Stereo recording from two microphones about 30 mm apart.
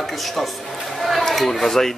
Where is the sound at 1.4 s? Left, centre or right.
Centre.